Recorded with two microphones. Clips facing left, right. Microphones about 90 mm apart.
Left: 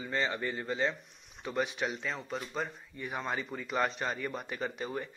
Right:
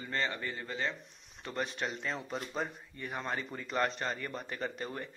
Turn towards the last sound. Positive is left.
turn(degrees=5)  # may be behind; listen again after turning